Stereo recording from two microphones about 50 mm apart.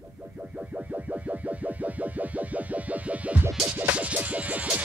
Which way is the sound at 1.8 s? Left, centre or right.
Right.